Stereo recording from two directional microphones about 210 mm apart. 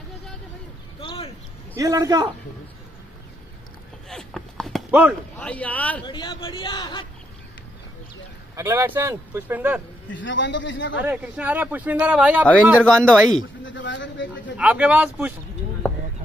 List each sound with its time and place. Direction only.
1.0 s a sound: 25° left (ahead or behind)
1.8 s speech: 15° right (ahead or behind)
4.1 s a sound: centre (ahead or behind)
5.4 s speech: 5° left (ahead or behind)
6.0 s speech: 20° left (ahead or behind)
8.5 s speech: 10° right (ahead or behind)
10.0 s a man's voice: 60° left (ahead or behind)
11.1 s speech: 5° right (ahead or behind)
13.7 s a man's voice: 60° left (ahead or behind)
14.6 s speech: 5° right (ahead or behind)